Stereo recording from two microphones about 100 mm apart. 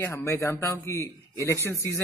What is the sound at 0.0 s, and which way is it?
A man's voice, 25° left (ahead or behind).